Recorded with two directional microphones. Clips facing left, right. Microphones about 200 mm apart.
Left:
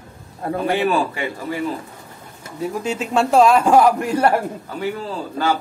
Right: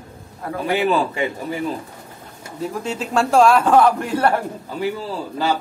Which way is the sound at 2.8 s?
5° left (ahead or behind).